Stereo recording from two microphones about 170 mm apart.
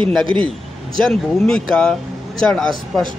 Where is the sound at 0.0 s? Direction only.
30° right (ahead or behind).